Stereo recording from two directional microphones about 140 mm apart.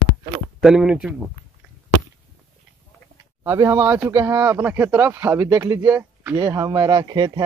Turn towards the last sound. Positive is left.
turn(degrees=-30)  # may be behind; listen again after turning